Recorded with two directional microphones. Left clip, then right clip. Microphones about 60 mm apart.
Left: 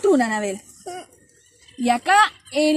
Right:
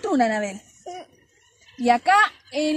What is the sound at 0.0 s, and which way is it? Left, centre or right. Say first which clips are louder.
Speech: left 3 dB; right.